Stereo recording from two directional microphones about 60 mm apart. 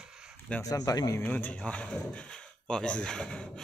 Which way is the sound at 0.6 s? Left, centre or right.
Left.